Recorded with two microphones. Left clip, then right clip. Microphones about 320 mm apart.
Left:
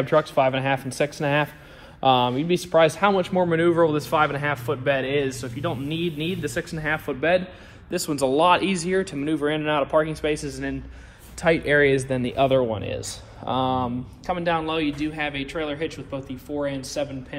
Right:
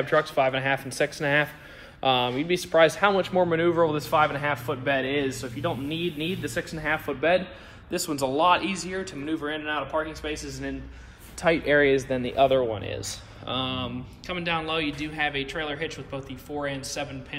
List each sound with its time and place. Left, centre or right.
0.0 s a man's voice: centre